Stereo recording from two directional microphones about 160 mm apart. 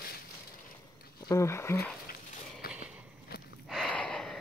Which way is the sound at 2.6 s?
70° left (ahead or behind).